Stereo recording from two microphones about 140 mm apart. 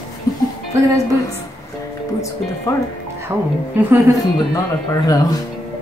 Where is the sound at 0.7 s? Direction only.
20° right (ahead or behind).